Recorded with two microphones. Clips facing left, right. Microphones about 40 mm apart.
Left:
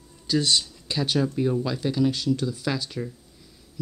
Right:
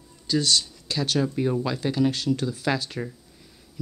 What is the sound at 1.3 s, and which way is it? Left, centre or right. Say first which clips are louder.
Speech: even; centre.